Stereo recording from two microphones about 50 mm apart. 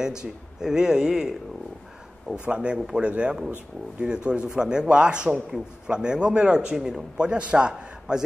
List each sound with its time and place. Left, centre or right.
0.0 s a man's voice: centre
2.4 s a man's voice: right
7.2 s a man's voice: centre